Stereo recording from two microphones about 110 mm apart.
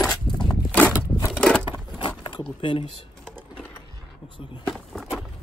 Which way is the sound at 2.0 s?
45° left (ahead or behind).